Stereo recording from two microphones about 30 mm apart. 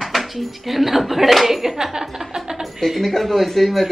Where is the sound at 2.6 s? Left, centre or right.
Centre.